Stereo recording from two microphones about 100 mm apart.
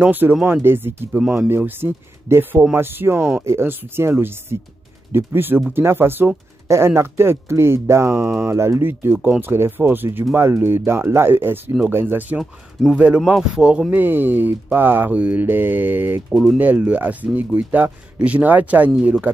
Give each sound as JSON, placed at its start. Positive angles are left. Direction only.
{"t": 0.0, "sound": "speech", "side_deg": -15}
{"t": 12.4, "sound": "speech", "side_deg": -5}
{"t": 16.3, "sound": "speech", "side_deg": 0}
{"t": 16.5, "sound": "speech", "side_deg": -15}